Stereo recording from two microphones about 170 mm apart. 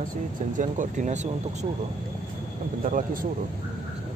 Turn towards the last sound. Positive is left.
turn(degrees=-55)  # may be behind; listen again after turning